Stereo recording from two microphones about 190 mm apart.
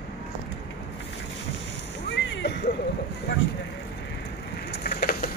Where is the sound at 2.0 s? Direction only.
65° left (ahead or behind).